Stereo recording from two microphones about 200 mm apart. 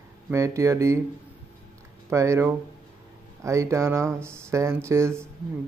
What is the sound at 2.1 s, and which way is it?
Speech, 15° right (ahead or behind).